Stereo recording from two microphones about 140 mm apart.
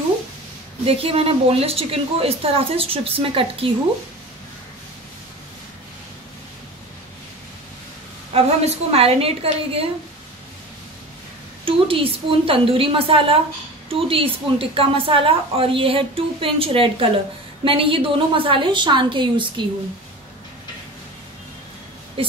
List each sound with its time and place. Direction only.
0.8 s a woman's voice: 45° right (ahead or behind)
8.3 s a woman's voice: 45° right (ahead or behind)
11.6 s a woman's voice: 40° right (ahead or behind)